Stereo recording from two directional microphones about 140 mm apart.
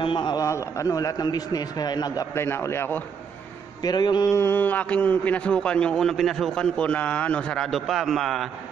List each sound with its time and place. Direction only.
0.0 s a man's voice: 35° left (ahead or behind); by 3.0 s 15° left (ahead or behind)
3.8 s a man's voice: 30° left (ahead or behind); by 8.5 s centre (ahead or behind)